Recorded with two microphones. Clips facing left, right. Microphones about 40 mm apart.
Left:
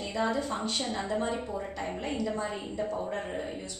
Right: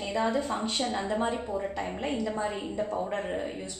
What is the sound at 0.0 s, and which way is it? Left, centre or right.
A woman's voice, centre.